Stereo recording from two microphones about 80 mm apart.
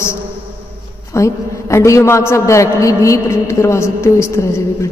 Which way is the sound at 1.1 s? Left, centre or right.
Left.